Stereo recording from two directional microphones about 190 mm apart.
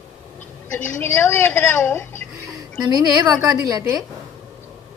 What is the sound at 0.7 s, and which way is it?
A woman's voice, 10° left (ahead or behind).